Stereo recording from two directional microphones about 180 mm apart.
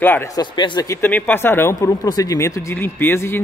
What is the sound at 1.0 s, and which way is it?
Speech, 10° left (ahead or behind).